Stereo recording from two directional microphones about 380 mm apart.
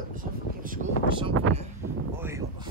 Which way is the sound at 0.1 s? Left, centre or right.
Right.